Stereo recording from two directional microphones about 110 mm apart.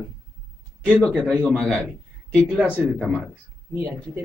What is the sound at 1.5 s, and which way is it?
Speech, 10° left (ahead or behind).